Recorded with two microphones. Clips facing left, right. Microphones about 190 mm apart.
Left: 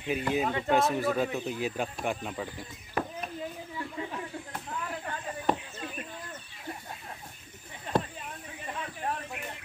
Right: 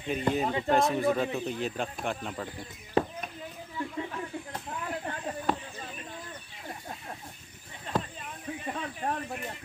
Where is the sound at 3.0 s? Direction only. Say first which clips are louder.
Right 5 dB; 25° right (ahead or behind).